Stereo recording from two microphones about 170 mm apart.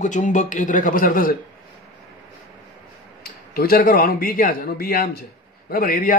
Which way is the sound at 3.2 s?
60° left (ahead or behind).